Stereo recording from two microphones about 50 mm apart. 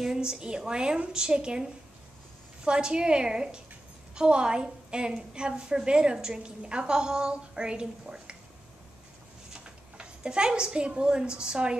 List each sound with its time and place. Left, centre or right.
0.0 s a woman's voice: centre
9.5 s a woman's voice: centre